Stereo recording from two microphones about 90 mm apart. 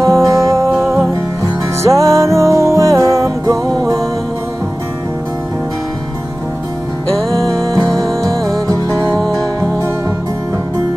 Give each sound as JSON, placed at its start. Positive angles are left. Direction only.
{"t": 0.0, "sound": "music", "side_deg": -35}
{"t": 7.4, "sound": "music", "side_deg": -35}
{"t": 7.9, "sound": "music", "side_deg": 5}
{"t": 8.6, "sound": "music", "side_deg": -40}